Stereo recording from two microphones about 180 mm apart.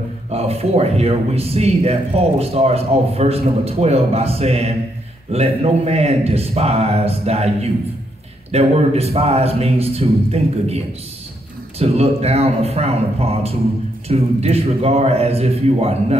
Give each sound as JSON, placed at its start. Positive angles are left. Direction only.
{"t": 0.3, "sound": "a man's voice", "side_deg": -35}
{"t": 11.8, "sound": "a man's voice", "side_deg": -35}